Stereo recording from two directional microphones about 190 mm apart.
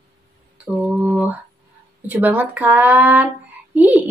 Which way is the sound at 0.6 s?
5° right (ahead or behind).